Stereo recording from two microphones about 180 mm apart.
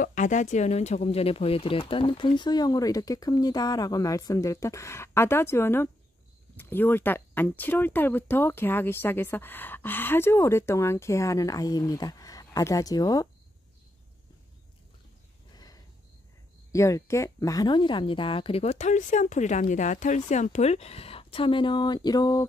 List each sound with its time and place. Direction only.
0.0 s speech: 45° left (ahead or behind); by 13.3 s 20° left (ahead or behind)
15.5 s a sound: 20° left (ahead or behind)
16.7 s speech: 15° left (ahead or behind)